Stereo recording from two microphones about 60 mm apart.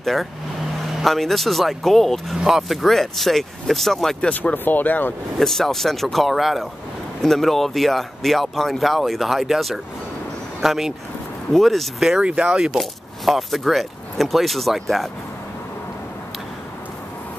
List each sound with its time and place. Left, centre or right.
0.0 s speech: centre
4.2 s speech: left
5.4 s speech: centre
12.2 s speech: centre
12.7 s speech: centre